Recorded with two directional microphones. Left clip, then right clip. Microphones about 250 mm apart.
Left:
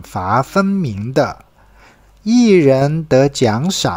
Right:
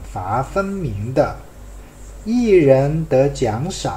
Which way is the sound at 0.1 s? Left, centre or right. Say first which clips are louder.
Left 5 dB; left.